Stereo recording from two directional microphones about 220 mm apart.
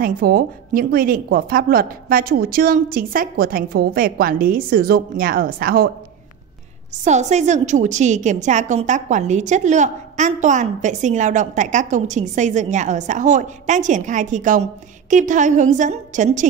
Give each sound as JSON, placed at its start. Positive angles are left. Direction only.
{"t": 0.0, "sound": "a woman's voice", "side_deg": -40}
{"t": 7.1, "sound": "a woman's voice", "side_deg": -30}